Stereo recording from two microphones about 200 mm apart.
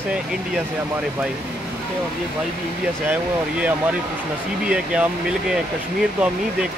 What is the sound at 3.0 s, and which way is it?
Speech, 5° right (ahead or behind).